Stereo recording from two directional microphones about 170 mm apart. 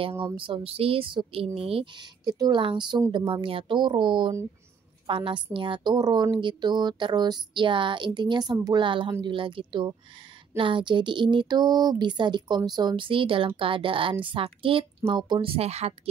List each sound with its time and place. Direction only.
0.0 s a woman's voice: 30° right (ahead or behind)